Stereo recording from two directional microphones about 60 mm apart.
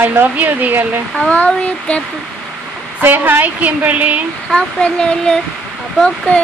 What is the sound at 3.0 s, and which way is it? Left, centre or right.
A woman's voice, right.